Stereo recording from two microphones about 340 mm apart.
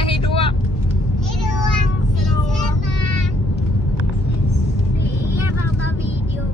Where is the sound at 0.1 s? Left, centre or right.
Centre.